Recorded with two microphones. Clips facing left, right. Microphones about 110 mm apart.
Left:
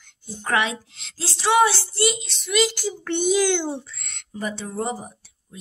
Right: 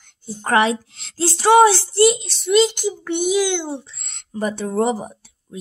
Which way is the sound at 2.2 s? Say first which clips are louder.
Right 6 dB; 30° right (ahead or behind).